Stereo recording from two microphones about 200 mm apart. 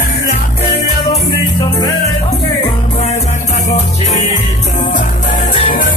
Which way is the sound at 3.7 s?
35° left (ahead or behind).